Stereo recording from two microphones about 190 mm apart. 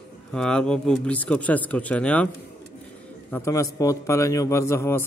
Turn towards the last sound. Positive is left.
turn(degrees=15)  # may be behind; listen again after turning